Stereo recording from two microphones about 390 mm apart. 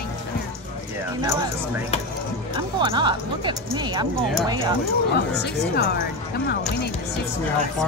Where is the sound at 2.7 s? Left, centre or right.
Centre.